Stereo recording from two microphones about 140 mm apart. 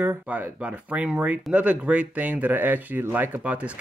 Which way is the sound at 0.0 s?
15° right (ahead or behind).